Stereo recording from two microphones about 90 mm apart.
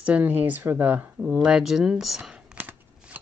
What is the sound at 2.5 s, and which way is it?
Shuffling cards, 15° right (ahead or behind).